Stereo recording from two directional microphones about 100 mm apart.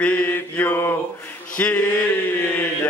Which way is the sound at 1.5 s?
15° left (ahead or behind).